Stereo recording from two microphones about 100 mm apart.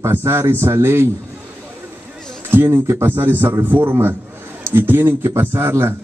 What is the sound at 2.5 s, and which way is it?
A man's voice, 25° right (ahead or behind).